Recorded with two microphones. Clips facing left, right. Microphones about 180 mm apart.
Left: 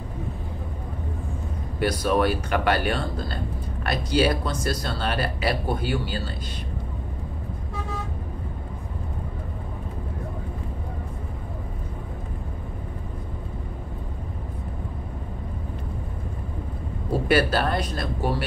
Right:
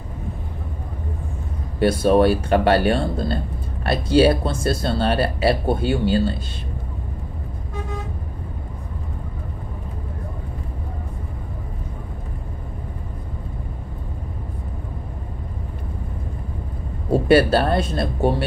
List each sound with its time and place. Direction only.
1.8 s speech: 30° right (ahead or behind)
17.1 s speech: 30° right (ahead or behind)